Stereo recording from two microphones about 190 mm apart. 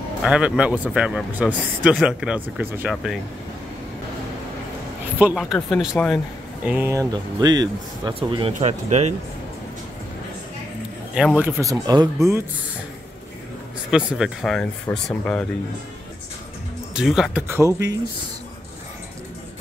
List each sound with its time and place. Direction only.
0.2 s a man's voice: 5° right (ahead or behind)
5.2 s a man's voice: centre (ahead or behind); by 9.1 s 35° right (ahead or behind)
11.1 s speech: 5° right (ahead or behind)
13.8 s a man's voice: 5° right (ahead or behind)
16.9 s speech: centre (ahead or behind)